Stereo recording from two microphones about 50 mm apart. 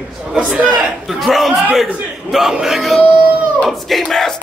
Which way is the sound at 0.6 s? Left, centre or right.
Right.